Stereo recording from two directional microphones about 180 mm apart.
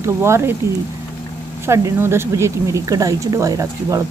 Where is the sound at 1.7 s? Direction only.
15° right (ahead or behind).